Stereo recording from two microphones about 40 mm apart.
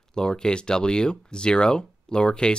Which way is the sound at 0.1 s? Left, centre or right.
Centre.